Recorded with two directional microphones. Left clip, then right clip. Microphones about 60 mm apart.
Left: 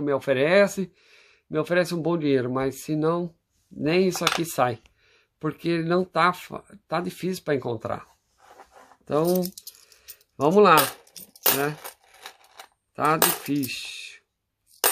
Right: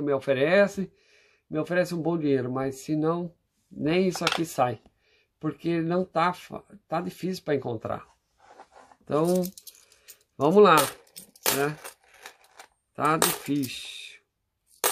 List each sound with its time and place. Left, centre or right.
0.0 s speech: left
3.8 s speech: left
9.0 s a sound: centre
10.7 s speech: centre
11.4 s a sound: centre
12.9 s speech: centre
14.7 s scissors: left